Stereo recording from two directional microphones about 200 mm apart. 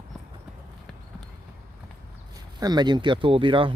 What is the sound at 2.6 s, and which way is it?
Speech, 20° right (ahead or behind).